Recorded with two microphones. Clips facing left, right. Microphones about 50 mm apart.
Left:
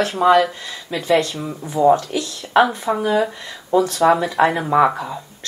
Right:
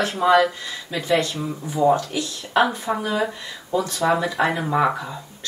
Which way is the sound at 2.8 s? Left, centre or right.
Centre.